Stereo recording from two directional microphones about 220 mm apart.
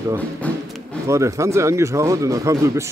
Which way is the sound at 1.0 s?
15° right (ahead or behind).